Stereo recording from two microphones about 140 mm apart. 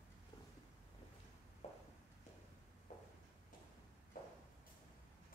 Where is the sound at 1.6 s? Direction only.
50° left (ahead or behind).